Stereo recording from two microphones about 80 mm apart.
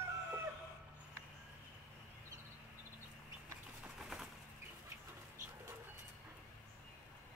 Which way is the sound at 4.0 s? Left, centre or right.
Centre.